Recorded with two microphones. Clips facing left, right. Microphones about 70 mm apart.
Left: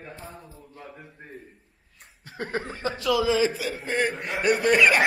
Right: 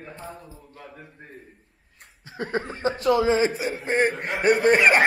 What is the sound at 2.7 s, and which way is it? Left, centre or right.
A man's voice, right.